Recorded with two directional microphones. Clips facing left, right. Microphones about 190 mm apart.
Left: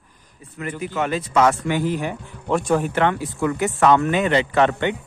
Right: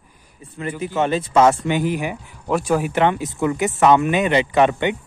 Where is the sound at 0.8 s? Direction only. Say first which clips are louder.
Right 4 dB; 25° right (ahead or behind).